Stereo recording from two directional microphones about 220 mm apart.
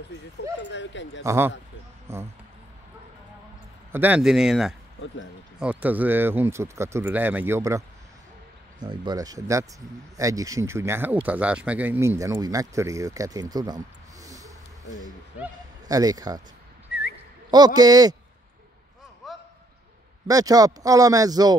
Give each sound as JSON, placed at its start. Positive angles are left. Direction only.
{"t": 0.7, "sound": "speech", "side_deg": 55}
{"t": 1.2, "sound": "speech", "side_deg": -10}
{"t": 3.9, "sound": "speech", "side_deg": -10}
{"t": 15.9, "sound": "speech", "side_deg": -15}
{"t": 16.9, "sound": "a sound", "side_deg": 45}
{"t": 17.5, "sound": "speech", "side_deg": -20}
{"t": 19.2, "sound": "a sound", "side_deg": 0}
{"t": 20.2, "sound": "speech", "side_deg": -15}